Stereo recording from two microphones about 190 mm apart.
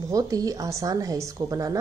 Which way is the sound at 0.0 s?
20° right (ahead or behind).